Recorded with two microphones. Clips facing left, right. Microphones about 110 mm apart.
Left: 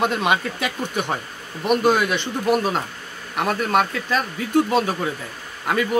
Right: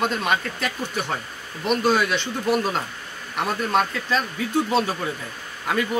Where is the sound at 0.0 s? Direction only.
15° left (ahead or behind).